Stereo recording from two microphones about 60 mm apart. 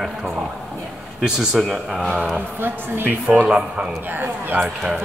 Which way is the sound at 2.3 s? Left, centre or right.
Right.